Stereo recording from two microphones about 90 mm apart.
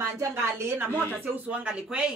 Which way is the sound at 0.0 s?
30° right (ahead or behind).